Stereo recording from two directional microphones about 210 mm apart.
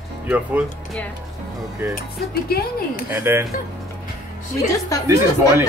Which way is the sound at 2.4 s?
45° left (ahead or behind).